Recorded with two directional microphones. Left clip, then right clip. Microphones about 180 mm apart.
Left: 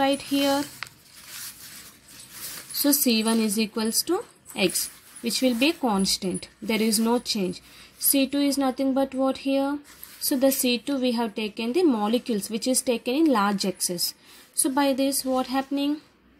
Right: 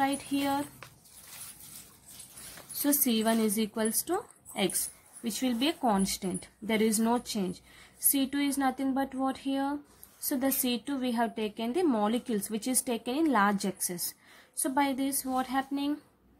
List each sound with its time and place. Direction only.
0.0 s speech: 25° left (ahead or behind)
2.8 s speech: 20° left (ahead or behind)